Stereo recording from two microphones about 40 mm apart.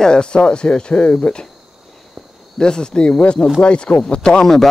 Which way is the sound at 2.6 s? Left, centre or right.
Centre.